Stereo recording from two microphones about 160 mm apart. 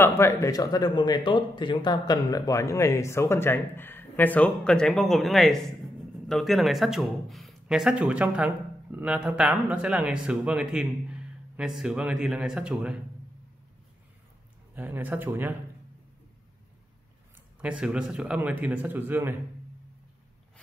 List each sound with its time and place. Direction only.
0.0 s a man's voice: 15° left (ahead or behind); by 12.9 s 5° right (ahead or behind)
14.8 s a man's voice: 10° right (ahead or behind)
17.6 s a man's voice: 5° right (ahead or behind)